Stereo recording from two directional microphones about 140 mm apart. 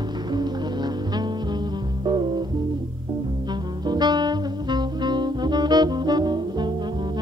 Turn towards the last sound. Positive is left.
turn(degrees=-30)  # may be behind; listen again after turning